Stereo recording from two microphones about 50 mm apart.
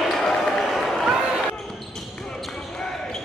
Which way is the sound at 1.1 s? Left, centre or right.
Centre.